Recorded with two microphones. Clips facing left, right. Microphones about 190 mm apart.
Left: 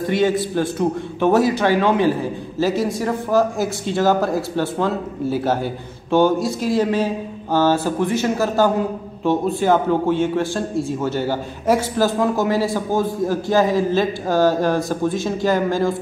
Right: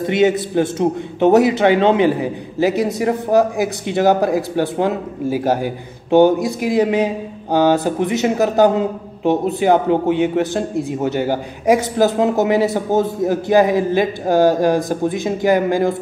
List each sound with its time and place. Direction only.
0.0 s a man's voice: 20° right (ahead or behind)